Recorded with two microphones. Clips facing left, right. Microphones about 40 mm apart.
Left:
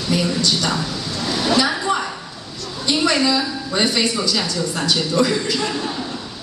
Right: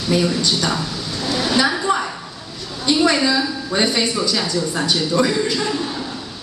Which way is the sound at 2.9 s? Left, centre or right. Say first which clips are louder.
Right 1 dB; centre.